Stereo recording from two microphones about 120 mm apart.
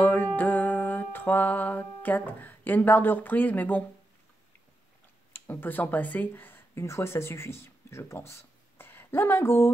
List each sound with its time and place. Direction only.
0.0 s music: 15° left (ahead or behind)
5.3 s speech: 15° left (ahead or behind)